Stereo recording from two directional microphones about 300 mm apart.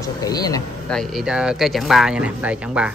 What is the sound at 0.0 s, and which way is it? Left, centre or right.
Speech, centre.